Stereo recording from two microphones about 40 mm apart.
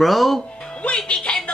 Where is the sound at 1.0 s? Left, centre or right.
Left.